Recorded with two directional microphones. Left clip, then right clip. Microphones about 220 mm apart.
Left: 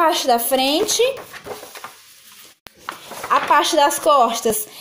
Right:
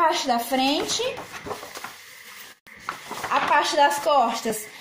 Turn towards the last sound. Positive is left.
turn(degrees=35)  # may be behind; listen again after turning